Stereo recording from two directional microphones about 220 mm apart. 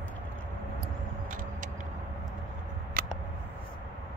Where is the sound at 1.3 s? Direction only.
40° right (ahead or behind).